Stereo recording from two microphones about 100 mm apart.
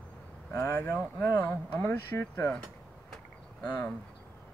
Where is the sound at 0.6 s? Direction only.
15° left (ahead or behind).